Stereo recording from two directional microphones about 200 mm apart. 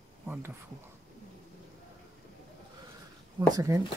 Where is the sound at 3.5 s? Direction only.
15° right (ahead or behind).